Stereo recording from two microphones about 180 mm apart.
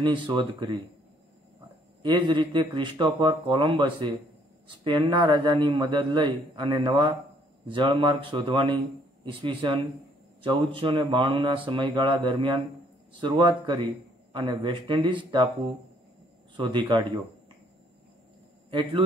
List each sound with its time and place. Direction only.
0.0 s speech: 25° right (ahead or behind)
2.0 s speech: 25° right (ahead or behind)
16.5 s a man's voice: 25° right (ahead or behind)
18.7 s speech: 25° right (ahead or behind)